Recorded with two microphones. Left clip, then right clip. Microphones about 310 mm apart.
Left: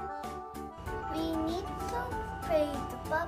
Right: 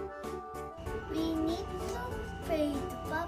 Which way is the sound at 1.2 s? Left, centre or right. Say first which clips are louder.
Right 2 dB; centre.